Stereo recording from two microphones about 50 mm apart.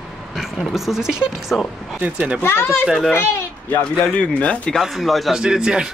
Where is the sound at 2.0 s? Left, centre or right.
Right.